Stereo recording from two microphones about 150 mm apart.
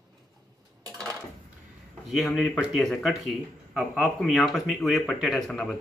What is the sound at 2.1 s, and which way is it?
Speech, centre (ahead or behind).